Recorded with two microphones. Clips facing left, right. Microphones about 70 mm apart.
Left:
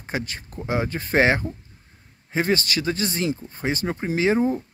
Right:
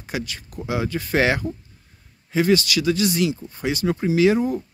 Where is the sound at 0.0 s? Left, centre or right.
Left.